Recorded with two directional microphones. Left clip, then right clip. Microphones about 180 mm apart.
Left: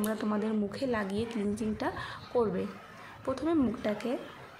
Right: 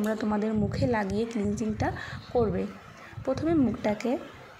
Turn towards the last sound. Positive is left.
turn(degrees=-20)  # may be behind; listen again after turning